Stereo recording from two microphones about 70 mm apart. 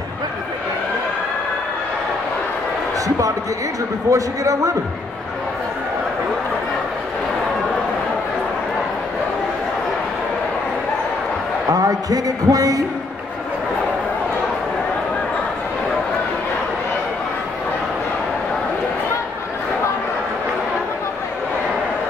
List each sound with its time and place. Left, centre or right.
4.1 s a man's voice: right
11.7 s a man's voice: right